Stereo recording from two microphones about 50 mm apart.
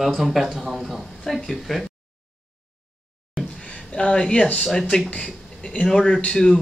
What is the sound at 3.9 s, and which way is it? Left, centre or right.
Speech, centre.